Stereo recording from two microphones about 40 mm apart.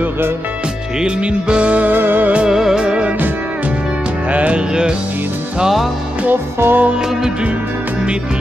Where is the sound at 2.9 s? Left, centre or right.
Right.